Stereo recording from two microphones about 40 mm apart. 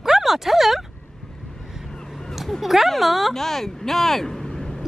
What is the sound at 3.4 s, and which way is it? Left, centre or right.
Speech, centre.